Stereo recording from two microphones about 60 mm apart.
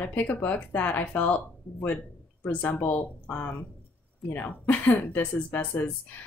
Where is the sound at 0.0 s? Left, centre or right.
Left.